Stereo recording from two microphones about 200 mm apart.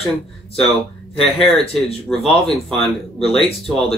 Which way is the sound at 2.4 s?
30° left (ahead or behind).